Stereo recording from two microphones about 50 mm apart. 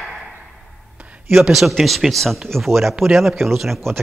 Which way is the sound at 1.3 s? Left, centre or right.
Centre.